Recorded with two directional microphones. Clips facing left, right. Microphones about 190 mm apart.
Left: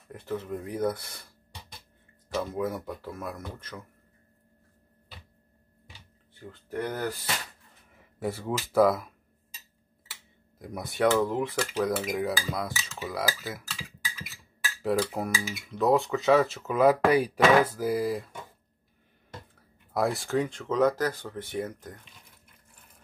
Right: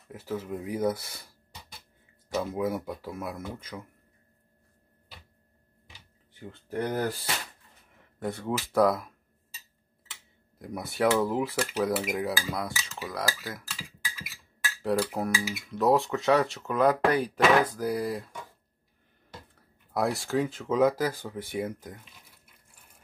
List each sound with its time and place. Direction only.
0.1 s speech: 5° right (ahead or behind)
6.4 s speech: 30° right (ahead or behind)
7.9 s a sound: 5° left (ahead or behind)
8.7 s speech: centre (ahead or behind)
10.6 s speech: centre (ahead or behind)
19.9 s speech: centre (ahead or behind)